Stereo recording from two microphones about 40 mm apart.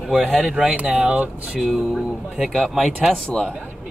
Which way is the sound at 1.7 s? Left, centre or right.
Centre.